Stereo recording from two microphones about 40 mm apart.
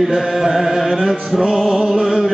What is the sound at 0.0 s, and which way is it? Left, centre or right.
Music, centre.